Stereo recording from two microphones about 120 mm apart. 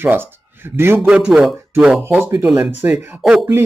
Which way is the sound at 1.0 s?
5° right (ahead or behind).